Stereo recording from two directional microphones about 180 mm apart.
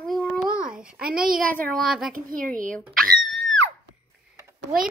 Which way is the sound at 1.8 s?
Centre (ahead or behind).